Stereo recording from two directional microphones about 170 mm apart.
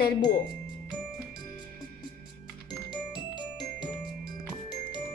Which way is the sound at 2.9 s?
25° left (ahead or behind).